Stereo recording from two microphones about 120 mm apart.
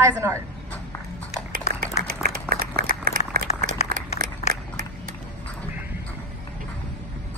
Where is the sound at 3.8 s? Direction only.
70° left (ahead or behind).